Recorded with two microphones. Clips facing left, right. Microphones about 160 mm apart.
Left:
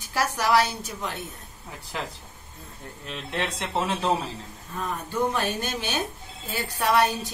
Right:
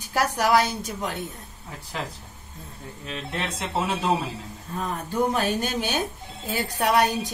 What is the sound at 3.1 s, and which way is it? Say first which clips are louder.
Speech: left 1 dB; 5° right (ahead or behind).